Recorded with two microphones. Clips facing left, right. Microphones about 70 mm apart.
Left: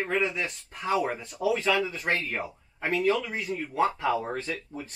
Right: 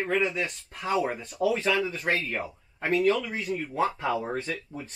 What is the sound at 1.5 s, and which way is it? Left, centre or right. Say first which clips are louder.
Speech: left 3 dB; centre.